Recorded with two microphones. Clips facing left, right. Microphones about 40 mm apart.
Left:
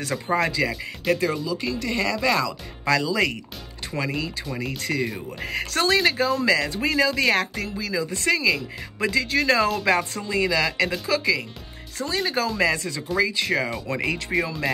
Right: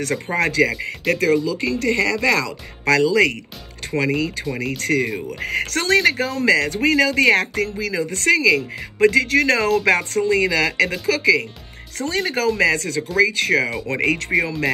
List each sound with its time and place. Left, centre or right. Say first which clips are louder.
0.1 s speech: right 1 dB; right